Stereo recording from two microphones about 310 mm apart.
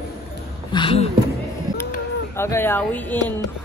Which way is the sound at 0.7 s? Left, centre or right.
Centre.